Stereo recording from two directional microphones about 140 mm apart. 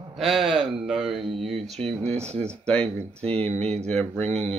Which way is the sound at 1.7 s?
45° right (ahead or behind).